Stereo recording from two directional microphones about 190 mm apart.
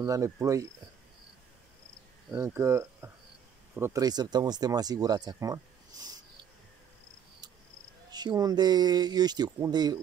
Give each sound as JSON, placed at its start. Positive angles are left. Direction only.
{"t": 0.0, "sound": "speech", "side_deg": -15}
{"t": 2.3, "sound": "speech", "side_deg": -15}
{"t": 8.1, "sound": "speech", "side_deg": -20}